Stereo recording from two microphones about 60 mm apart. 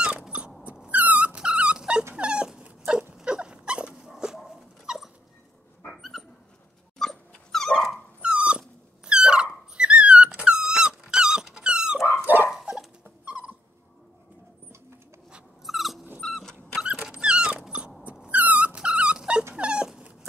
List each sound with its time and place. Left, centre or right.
0.3 s dog: right; by 8.0 s centre
8.2 s dog: centre
12.3 s dog: right
13.0 s dog: right
15.6 s dog: centre
17.2 s dog: centre